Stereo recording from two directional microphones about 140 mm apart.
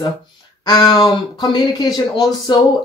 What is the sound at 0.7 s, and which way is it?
Speech, 30° left (ahead or behind).